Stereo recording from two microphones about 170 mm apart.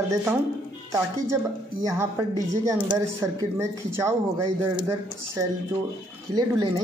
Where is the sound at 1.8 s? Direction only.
15° right (ahead or behind).